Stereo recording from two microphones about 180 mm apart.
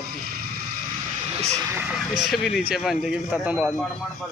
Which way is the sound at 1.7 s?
15° right (ahead or behind).